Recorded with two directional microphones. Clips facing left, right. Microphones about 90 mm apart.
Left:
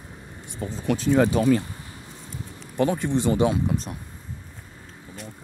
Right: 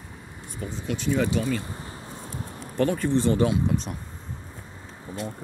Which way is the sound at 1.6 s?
35° right (ahead or behind).